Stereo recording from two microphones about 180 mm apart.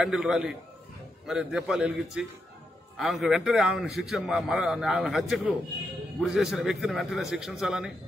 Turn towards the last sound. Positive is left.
turn(degrees=-5)  # may be behind; listen again after turning